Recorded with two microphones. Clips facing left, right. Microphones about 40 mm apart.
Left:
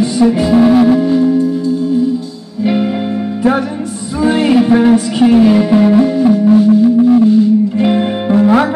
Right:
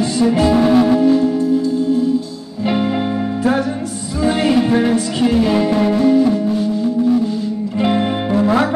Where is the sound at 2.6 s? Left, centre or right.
Centre.